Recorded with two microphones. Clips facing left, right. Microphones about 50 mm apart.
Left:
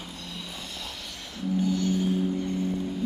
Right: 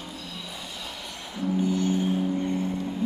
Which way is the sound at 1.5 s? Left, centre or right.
Right.